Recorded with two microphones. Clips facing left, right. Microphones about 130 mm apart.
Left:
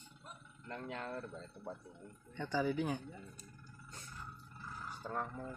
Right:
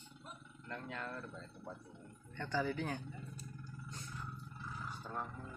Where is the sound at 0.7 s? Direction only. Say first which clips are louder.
Left 2 dB; 20° left (ahead or behind).